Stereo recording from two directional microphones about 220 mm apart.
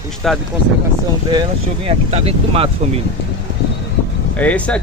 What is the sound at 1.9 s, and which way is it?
Speech, 25° right (ahead or behind).